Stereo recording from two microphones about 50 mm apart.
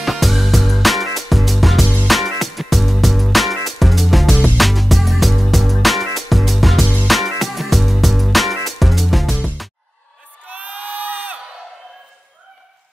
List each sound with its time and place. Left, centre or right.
0.0 s music: centre
10.5 s sheep: right